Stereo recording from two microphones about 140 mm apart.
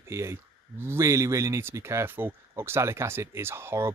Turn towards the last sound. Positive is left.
turn(degrees=-15)  # may be behind; listen again after turning